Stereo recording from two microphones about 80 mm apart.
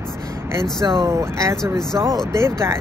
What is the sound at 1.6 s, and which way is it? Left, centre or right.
Speech, centre.